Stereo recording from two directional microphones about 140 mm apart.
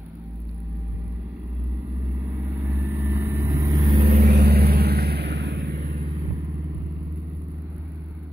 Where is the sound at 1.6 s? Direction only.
15° right (ahead or behind); by 4.1 s 30° right (ahead or behind).